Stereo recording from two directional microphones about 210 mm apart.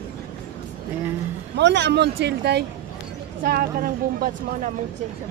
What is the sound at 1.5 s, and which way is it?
Speech, 55° right (ahead or behind).